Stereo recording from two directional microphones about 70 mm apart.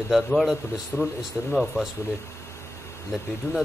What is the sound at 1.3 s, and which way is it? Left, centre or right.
Speech, centre.